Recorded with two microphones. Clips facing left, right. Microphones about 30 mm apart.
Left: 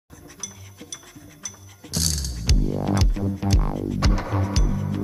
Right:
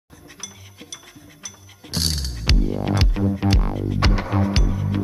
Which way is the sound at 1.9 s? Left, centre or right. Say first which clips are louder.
Right 2 dB; right.